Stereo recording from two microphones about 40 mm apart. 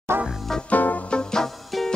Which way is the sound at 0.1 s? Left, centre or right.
Right.